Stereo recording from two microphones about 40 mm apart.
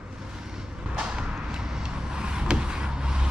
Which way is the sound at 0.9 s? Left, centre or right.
Right.